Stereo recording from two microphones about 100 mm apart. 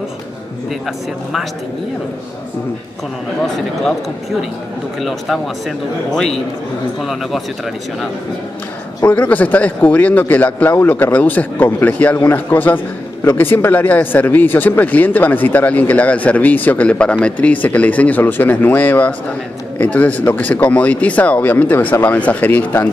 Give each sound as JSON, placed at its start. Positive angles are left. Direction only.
{"t": 3.4, "sound": "speech", "side_deg": 5}
{"t": 6.1, "sound": "speech", "side_deg": 5}
{"t": 9.0, "sound": "a man's voice", "side_deg": 15}